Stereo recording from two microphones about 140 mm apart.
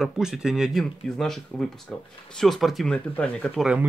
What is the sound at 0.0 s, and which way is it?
Speech, 5° right (ahead or behind).